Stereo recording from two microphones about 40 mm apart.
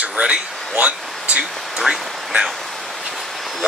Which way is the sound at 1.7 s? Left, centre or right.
Centre.